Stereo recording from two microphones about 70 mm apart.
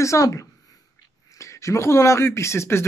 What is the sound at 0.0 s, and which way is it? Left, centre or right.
Speech, left.